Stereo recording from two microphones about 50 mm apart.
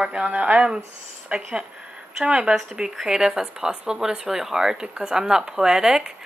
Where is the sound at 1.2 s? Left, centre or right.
Right.